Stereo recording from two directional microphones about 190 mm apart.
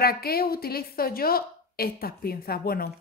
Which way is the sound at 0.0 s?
55° left (ahead or behind).